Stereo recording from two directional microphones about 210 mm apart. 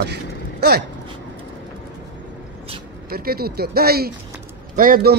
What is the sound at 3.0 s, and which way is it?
Speech, 45° right (ahead or behind).